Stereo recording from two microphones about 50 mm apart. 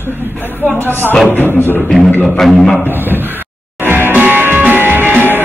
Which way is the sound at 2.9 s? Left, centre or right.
Right.